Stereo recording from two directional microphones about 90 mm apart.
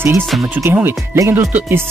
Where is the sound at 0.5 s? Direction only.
20° right (ahead or behind).